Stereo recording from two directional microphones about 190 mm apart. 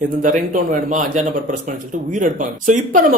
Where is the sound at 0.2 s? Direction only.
45° right (ahead or behind).